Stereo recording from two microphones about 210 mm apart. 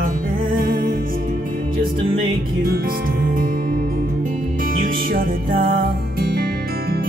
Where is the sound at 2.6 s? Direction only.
45° right (ahead or behind).